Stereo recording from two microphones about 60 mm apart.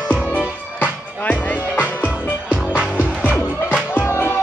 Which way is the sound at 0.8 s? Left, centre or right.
Left.